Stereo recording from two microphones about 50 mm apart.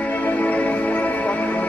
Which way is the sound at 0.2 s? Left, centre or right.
Left.